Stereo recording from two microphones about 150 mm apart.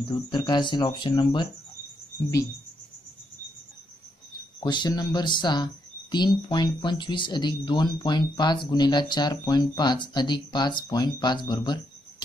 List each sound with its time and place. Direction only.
0.1 s speech: 30° left (ahead or behind)
4.6 s speech: 30° left (ahead or behind)